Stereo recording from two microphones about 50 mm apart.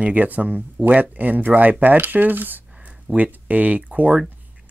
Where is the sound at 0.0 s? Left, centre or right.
Right.